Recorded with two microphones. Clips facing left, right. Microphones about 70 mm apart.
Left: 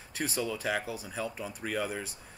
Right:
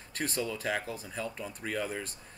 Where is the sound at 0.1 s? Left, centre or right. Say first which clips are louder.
Left 1 dB; centre.